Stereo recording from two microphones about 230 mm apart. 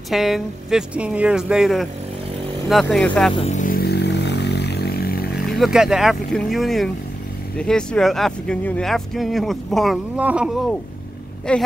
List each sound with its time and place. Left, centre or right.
0.1 s speech: centre
3.3 s a sound: left
5.6 s speech: centre